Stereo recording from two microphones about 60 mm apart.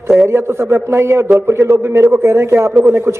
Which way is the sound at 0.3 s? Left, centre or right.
Right.